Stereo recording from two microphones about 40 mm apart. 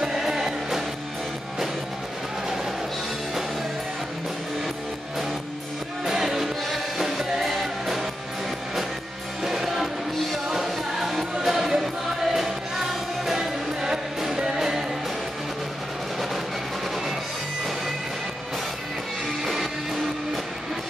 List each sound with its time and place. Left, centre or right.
0.0 s music: centre
6.0 s music: centre
9.4 s music: centre
19.4 s music: centre